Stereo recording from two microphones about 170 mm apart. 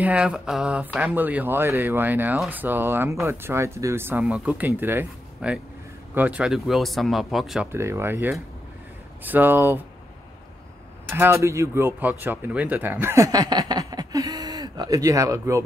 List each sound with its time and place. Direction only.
0.0 s speech: 5° right (ahead or behind)
7.7 s speech: 15° right (ahead or behind)
11.1 s speech: 15° right (ahead or behind)